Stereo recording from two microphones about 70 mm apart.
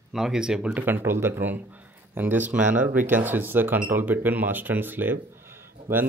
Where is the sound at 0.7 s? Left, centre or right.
Right.